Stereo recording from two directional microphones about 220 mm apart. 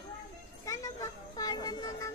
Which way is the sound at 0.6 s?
15° left (ahead or behind).